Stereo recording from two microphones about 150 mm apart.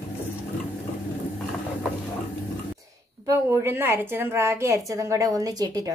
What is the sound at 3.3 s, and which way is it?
A woman's voice, 20° right (ahead or behind).